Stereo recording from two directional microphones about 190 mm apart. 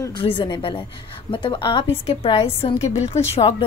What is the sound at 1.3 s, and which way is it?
A woman's voice, 25° left (ahead or behind).